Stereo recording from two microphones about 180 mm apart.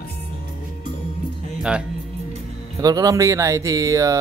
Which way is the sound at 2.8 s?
20° right (ahead or behind).